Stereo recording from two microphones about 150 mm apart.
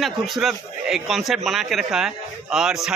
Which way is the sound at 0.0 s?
Centre (ahead or behind).